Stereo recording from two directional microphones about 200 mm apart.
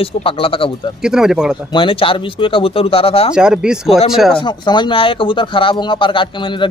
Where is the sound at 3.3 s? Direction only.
5° right (ahead or behind).